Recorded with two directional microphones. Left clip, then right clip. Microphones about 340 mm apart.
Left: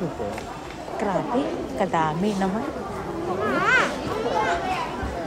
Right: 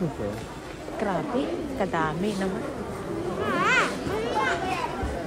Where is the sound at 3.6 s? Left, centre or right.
Right.